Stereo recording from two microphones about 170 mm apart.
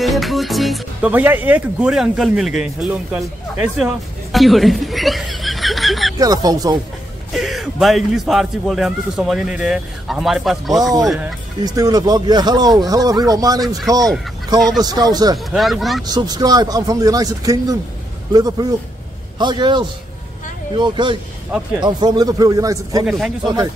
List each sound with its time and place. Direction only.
0.0 s a man's voice: centre (ahead or behind)
3.7 s chuckle: centre (ahead or behind)
6.1 s speech: 20° right (ahead or behind)
7.3 s a man's voice: centre (ahead or behind)
11.6 s speech: 20° right (ahead or behind)
15.3 s a man's voice: centre (ahead or behind)
16.1 s speech: 25° right (ahead or behind)
21.5 s a man's voice: 5° right (ahead or behind)
21.8 s speech: 25° right (ahead or behind)
23.0 s a man's voice: centre (ahead or behind)
23.4 s speech: 20° right (ahead or behind)